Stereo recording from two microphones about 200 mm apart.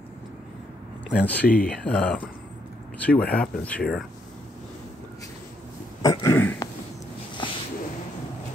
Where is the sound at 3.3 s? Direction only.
5° left (ahead or behind).